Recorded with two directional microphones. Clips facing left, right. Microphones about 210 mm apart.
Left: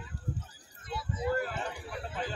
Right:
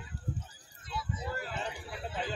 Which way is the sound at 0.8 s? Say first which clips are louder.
Left 5 dB; 50° left (ahead or behind).